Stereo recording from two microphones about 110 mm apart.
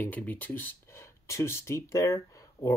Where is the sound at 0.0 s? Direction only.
15° left (ahead or behind).